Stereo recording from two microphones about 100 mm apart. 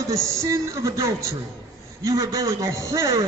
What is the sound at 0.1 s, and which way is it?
A man's voice, 30° right (ahead or behind).